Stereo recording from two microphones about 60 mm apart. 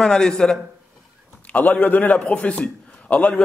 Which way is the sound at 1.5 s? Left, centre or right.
Left.